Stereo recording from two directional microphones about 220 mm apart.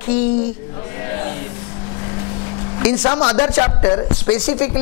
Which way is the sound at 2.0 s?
25° left (ahead or behind).